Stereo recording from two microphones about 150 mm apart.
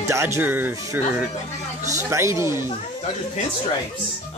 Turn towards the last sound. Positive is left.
turn(degrees=-20)  # may be behind; listen again after turning